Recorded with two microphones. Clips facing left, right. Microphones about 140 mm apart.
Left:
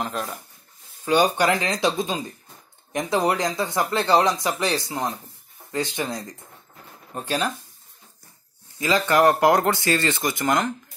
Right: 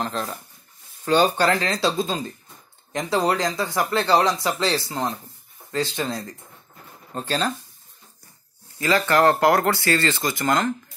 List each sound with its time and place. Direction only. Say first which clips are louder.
0.0 s speech: right 1 dB; 5° left (ahead or behind)
8.7 s speech: even; 15° left (ahead or behind)